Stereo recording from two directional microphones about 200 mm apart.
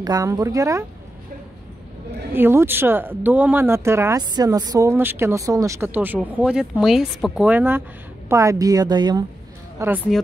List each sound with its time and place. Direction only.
0.0 s speech: 15° right (ahead or behind)
2.3 s speech: 10° right (ahead or behind)